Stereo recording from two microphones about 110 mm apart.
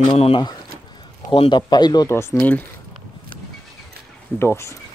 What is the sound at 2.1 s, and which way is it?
Speech, 20° left (ahead or behind).